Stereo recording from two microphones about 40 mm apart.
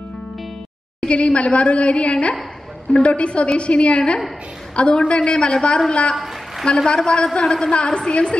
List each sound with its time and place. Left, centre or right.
1.0 s a woman's voice: left
6.1 s a sound: centre
6.6 s a woman's voice: centre